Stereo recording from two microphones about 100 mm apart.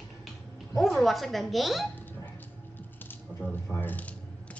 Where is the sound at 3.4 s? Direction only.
15° left (ahead or behind).